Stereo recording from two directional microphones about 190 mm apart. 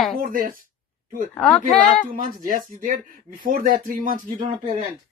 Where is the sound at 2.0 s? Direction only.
45° right (ahead or behind).